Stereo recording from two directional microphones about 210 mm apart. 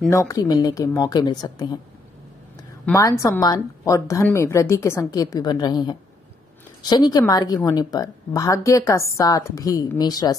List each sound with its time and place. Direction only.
0.1 s a woman's voice: 15° left (ahead or behind)
2.8 s a woman's voice: 15° left (ahead or behind)